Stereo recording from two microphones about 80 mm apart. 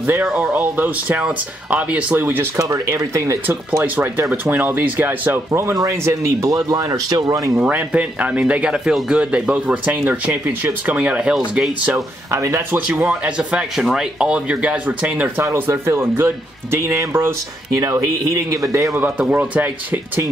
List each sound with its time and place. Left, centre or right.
0.0 s speech: right
2.7 s speech: right
3.8 s speech: right
7.5 s speech: centre
12.3 s speech: right
12.9 s speech: centre
15.4 s speech: right
18.9 s speech: right